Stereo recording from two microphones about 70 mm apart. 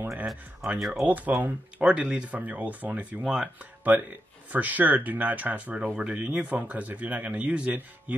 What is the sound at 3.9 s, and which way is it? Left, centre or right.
A man's voice, right.